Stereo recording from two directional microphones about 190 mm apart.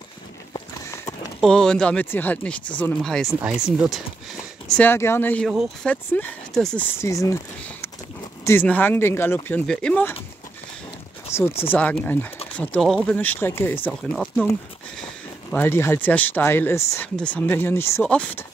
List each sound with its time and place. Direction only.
0.9 s clip-clop: 15° left (ahead or behind)
1.4 s speech: 5° left (ahead or behind)
4.6 s speech: 5° left (ahead or behind)
11.3 s speech: 15° left (ahead or behind)
15.5 s speech: 10° left (ahead or behind)